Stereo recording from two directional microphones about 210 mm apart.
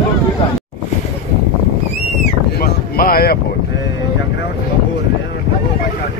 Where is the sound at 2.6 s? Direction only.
45° left (ahead or behind).